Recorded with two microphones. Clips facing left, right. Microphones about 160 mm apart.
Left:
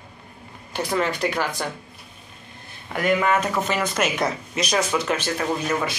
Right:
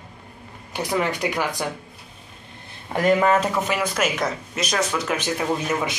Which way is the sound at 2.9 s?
35° right (ahead or behind).